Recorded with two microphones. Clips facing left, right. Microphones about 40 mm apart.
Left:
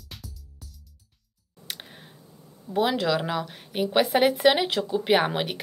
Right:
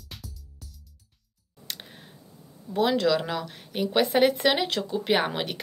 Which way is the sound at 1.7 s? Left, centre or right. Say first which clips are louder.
Left 1 dB; centre.